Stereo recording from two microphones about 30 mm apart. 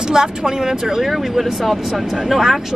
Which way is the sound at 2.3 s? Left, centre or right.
Centre.